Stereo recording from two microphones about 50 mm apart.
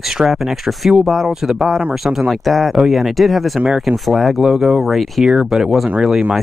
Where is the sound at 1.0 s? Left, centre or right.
Centre.